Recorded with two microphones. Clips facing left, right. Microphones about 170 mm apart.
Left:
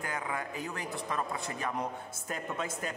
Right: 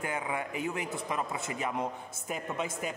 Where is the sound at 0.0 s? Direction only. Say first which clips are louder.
Right 2 dB; 20° right (ahead or behind).